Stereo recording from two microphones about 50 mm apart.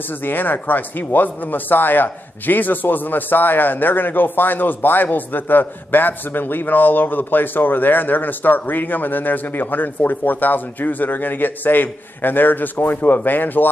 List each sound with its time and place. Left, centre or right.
0.1 s speech: left